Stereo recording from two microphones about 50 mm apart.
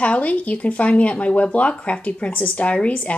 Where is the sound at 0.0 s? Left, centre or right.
Left.